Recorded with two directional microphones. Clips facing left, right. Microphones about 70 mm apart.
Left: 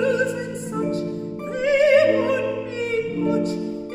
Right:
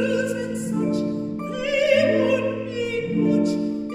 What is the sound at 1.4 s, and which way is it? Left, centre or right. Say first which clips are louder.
Opera: left 4 dB; left.